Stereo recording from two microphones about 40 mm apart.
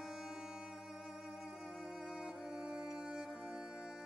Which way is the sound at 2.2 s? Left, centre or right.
Centre.